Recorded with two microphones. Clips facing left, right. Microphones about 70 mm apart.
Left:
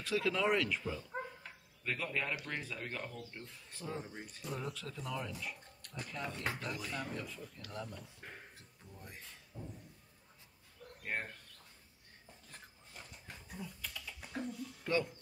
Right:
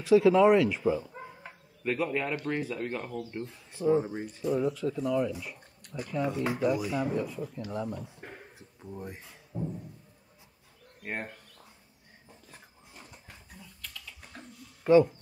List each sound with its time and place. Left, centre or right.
0.0 s speech: centre
3.0 s speech: right
4.2 s speech: centre
8.2 s a sound: right
11.0 s speech: centre
12.4 s dog: centre
13.6 s typing: centre
14.8 s a sound: centre